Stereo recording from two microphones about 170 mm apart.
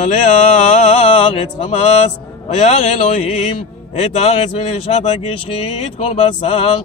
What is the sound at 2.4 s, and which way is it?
Speech, 40° left (ahead or behind).